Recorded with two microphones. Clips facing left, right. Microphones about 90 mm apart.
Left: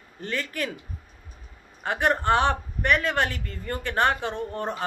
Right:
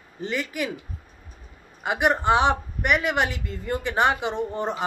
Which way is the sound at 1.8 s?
10° right (ahead or behind).